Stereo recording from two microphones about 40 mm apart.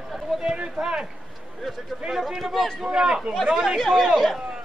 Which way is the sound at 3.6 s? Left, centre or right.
Centre.